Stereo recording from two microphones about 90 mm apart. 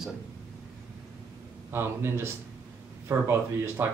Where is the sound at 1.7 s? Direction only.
30° right (ahead or behind).